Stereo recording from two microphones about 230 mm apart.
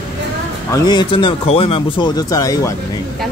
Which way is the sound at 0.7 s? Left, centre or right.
Centre.